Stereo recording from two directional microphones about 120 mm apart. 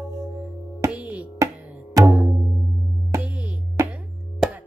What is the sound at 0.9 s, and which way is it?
Music, 10° right (ahead or behind).